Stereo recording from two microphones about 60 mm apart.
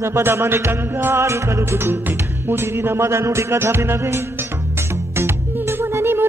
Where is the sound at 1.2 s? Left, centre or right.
Right.